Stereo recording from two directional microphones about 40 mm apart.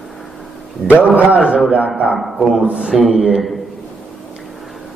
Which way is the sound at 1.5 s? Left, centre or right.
Right.